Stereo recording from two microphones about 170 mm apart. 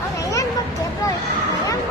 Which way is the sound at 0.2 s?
20° left (ahead or behind).